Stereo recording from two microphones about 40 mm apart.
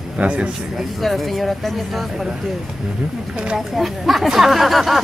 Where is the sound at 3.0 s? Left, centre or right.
Right.